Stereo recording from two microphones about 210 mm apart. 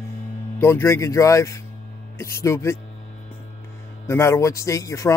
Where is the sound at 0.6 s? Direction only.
10° left (ahead or behind).